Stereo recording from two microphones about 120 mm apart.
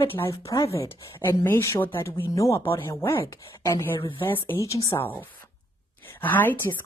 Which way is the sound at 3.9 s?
40° left (ahead or behind).